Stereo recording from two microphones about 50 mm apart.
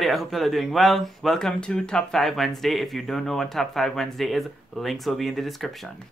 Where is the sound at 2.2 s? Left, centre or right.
Centre.